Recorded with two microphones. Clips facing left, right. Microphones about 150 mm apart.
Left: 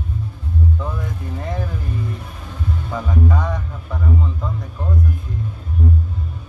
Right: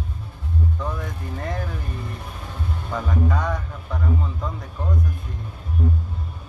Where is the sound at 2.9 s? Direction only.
Centre (ahead or behind).